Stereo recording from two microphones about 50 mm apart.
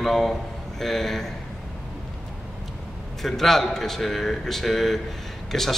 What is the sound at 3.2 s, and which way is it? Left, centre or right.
A man's voice, centre.